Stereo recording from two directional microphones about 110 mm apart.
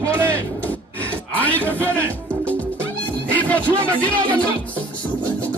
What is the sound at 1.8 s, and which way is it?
Music, 15° left (ahead or behind).